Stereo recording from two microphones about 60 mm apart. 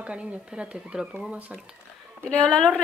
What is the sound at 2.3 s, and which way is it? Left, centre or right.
Speech, left.